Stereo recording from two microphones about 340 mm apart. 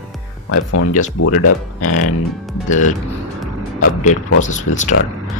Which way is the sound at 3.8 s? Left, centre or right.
Left.